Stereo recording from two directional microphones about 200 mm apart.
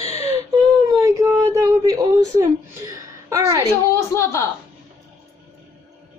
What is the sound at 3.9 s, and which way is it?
Speech, 15° left (ahead or behind).